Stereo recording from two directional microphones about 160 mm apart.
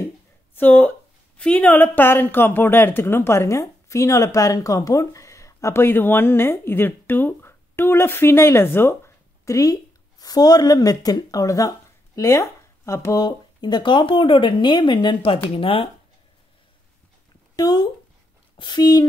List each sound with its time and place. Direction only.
0.6 s a woman's voice: 10° left (ahead or behind); by 15.9 s 35° left (ahead or behind)
17.6 s speech: 25° left (ahead or behind)